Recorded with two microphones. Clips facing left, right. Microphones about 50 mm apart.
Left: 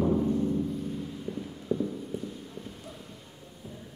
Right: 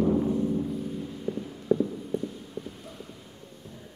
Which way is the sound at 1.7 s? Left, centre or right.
Centre.